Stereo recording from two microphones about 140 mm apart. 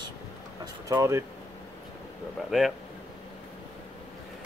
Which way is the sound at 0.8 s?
25° right (ahead or behind).